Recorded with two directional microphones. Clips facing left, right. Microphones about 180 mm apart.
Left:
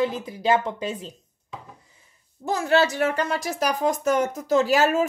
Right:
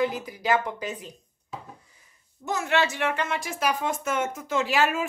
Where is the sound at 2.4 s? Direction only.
35° left (ahead or behind).